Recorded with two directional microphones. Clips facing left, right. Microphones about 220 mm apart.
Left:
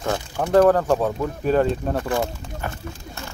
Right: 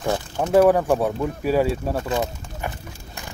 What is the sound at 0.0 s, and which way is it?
Speech, 20° right (ahead or behind).